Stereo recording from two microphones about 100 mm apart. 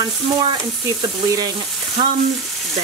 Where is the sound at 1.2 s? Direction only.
40° right (ahead or behind).